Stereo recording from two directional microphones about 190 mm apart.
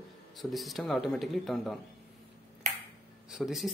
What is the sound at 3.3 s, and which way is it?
Speech, centre (ahead or behind).